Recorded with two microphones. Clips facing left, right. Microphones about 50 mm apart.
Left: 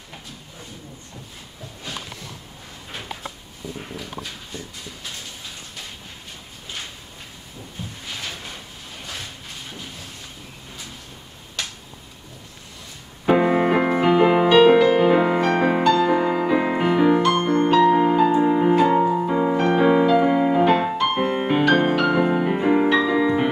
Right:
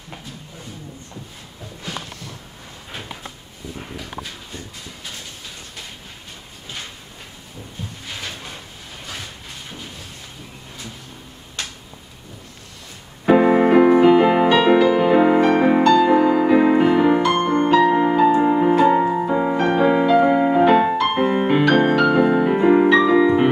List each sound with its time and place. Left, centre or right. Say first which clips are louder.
13.6 s music: right 6 dB; centre
17.3 s music: right 1 dB; right
17.6 s music: even; centre
18.9 s music: right 2 dB; centre
19.6 s music: even; centre
22.5 s music: right 4 dB; centre